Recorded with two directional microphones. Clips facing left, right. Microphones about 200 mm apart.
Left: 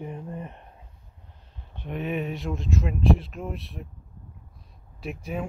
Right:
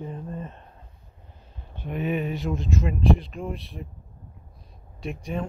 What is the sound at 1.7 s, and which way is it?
Speech, centre (ahead or behind).